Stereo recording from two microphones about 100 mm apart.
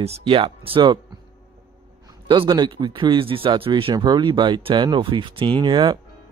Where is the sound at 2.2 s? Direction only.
50° right (ahead or behind); by 3.9 s 65° right (ahead or behind).